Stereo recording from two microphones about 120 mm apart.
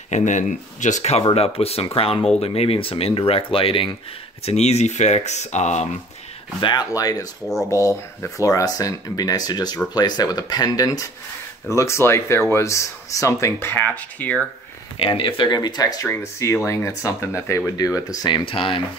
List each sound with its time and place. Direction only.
0.1 s speech: 90° left; by 1.2 s 75° left (ahead or behind)
1.3 s speech: 55° left (ahead or behind)
4.5 s speech: 65° left (ahead or behind)
6.6 s speech: 35° left (ahead or behind); by 14.5 s 10° left (ahead or behind)
15.0 s speech: 50° left (ahead or behind); by 18.3 s 30° left (ahead or behind)
18.3 s speech: 50° left (ahead or behind)